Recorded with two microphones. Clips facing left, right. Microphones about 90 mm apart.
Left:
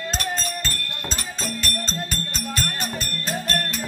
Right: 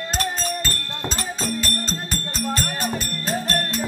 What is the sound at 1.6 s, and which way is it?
Music, 5° right (ahead or behind).